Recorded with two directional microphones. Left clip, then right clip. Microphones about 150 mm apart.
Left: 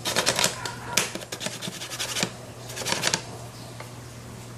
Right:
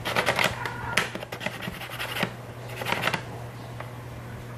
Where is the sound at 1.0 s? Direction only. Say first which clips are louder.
Left 1 dB; 15° left (ahead or behind).